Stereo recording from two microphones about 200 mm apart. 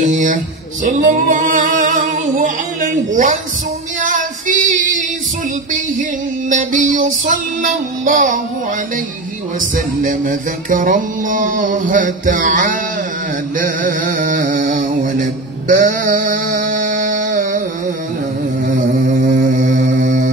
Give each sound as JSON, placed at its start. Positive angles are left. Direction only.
{"t": 0.0, "sound": "a sound", "side_deg": -40}
{"t": 0.8, "sound": "music", "side_deg": -40}
{"t": 4.0, "sound": "child singing", "side_deg": -40}
{"t": 6.5, "sound": "music", "side_deg": -40}
{"t": 9.6, "sound": "music", "side_deg": -40}
{"t": 13.6, "sound": "a sound", "side_deg": -40}
{"t": 18.7, "sound": "mantra", "side_deg": -40}